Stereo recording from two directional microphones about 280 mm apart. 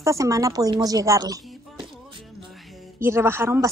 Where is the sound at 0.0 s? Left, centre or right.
Centre.